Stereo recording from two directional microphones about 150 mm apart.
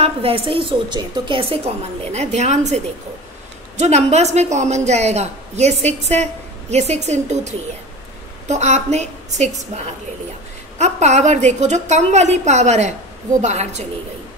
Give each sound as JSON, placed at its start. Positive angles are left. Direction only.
{"t": 0.0, "sound": "a woman's voice", "side_deg": -40}
{"t": 2.1, "sound": "a woman's voice", "side_deg": -50}
{"t": 10.8, "sound": "a woman's voice", "side_deg": -50}